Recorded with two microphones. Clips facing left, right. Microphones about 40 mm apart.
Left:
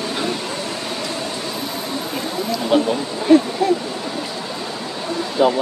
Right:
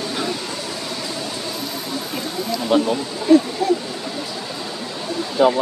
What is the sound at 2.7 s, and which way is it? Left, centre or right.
Speech, centre.